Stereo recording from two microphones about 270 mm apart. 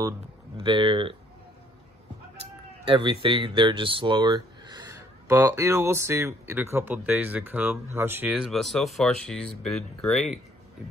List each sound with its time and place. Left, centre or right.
0.6 s speech: centre
2.9 s speech: centre